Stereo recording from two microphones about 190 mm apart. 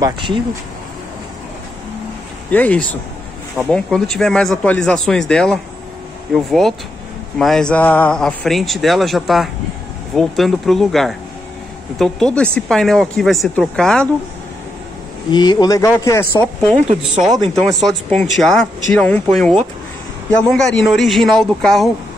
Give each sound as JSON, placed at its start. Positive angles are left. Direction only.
{"t": 0.0, "sound": "speech", "side_deg": -25}
{"t": 2.5, "sound": "speech", "side_deg": 10}
{"t": 15.3, "sound": "speech", "side_deg": 20}
{"t": 17.2, "sound": "speech", "side_deg": 0}